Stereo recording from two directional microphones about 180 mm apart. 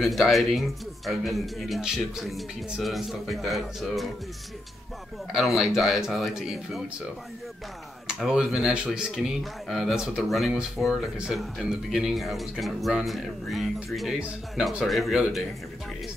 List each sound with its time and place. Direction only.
0.0 s speech: centre (ahead or behind)
5.3 s speech: centre (ahead or behind)
8.2 s speech: 5° right (ahead or behind)